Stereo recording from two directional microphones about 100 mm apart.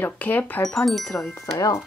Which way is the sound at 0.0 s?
15° left (ahead or behind).